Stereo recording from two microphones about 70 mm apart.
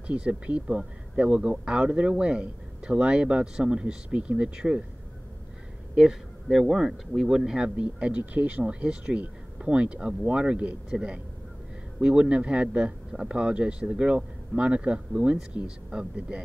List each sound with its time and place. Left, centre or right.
0.0 s speech: centre
5.9 s speech: centre